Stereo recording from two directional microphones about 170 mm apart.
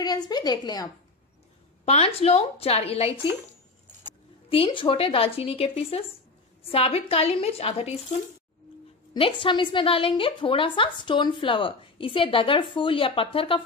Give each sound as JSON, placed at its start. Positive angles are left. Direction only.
{"t": 0.0, "sound": "a woman's voice", "side_deg": 25}
{"t": 1.9, "sound": "a woman's voice", "side_deg": 35}
{"t": 4.5, "sound": "a woman's voice", "side_deg": 30}
{"t": 9.1, "sound": "a woman's voice", "side_deg": 30}